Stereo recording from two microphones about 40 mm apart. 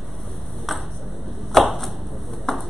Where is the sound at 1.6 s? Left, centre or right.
Centre.